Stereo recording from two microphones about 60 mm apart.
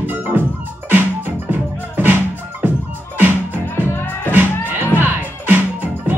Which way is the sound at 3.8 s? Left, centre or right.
Left.